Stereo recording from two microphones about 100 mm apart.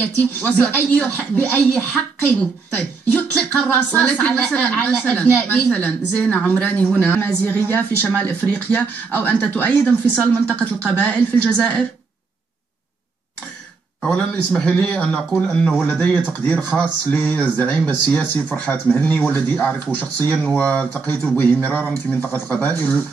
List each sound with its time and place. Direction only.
0.4 s a woman's voice: 15° left (ahead or behind)
14.0 s a woman's voice: 10° left (ahead or behind)
15.8 s a woman's voice: 15° left (ahead or behind)